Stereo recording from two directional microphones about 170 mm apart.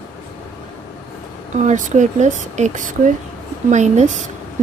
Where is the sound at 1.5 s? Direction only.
45° right (ahead or behind).